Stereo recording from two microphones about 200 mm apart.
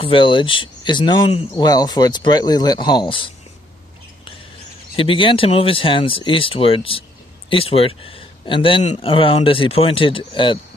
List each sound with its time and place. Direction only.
0.0 s speech: 25° left (ahead or behind)
4.9 s speech: 25° left (ahead or behind)